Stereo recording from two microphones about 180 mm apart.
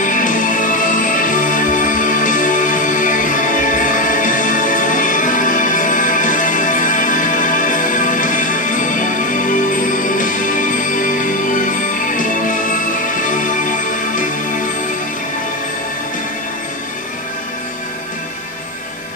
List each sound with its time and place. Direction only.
0.0 s music: 45° left (ahead or behind)